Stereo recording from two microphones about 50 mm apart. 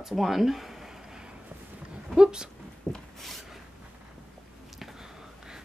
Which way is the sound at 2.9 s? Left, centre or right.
Centre.